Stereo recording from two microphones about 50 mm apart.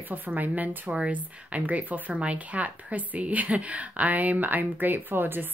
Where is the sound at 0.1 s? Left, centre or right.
Right.